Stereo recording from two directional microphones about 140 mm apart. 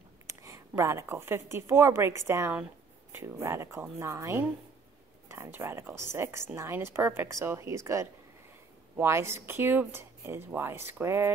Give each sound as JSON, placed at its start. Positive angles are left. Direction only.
{"t": 0.3, "sound": "a woman's voice", "side_deg": -20}